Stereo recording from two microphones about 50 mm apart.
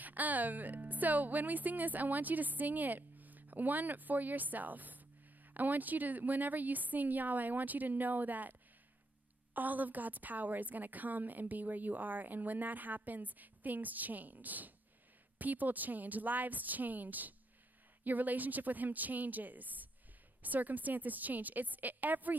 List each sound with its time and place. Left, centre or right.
0.0 s speech: right